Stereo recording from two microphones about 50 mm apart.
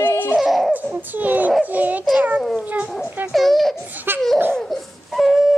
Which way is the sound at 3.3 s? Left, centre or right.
Centre.